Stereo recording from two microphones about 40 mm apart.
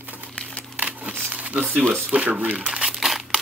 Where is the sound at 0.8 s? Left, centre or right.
Right.